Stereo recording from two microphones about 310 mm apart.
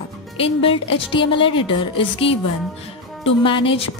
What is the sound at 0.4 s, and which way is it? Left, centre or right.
A woman's voice, centre.